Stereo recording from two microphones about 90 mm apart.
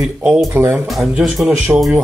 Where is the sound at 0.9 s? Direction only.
Centre (ahead or behind).